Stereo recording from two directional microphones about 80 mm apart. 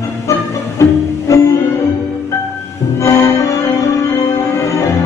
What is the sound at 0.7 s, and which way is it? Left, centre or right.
Music, left.